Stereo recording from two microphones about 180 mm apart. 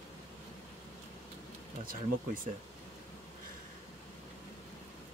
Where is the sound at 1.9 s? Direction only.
50° right (ahead or behind).